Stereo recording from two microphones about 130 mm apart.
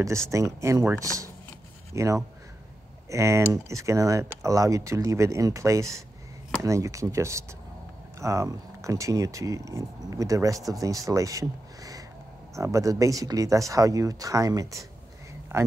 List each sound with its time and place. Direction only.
0.3 s speech: 25° right (ahead or behind)